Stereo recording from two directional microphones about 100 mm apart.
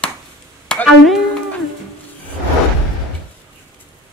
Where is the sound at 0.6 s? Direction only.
10° left (ahead or behind).